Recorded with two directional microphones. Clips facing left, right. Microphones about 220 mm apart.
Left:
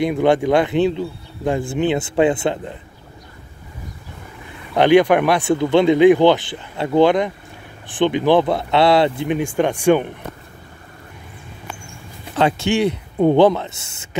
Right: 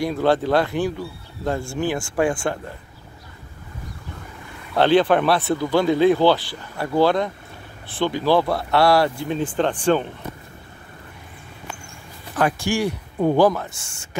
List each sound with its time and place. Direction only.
0.0 s speech: 15° left (ahead or behind)
4.7 s speech: 15° left (ahead or behind)
12.4 s speech: 25° left (ahead or behind)